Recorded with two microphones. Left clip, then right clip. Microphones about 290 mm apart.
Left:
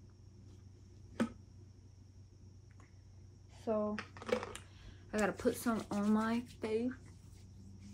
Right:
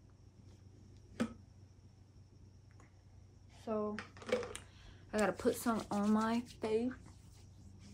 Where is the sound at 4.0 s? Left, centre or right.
Centre.